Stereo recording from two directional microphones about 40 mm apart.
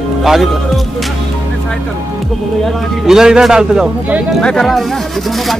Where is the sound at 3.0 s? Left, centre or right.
Centre.